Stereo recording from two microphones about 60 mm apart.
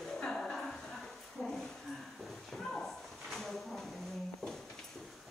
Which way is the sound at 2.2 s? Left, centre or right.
Centre.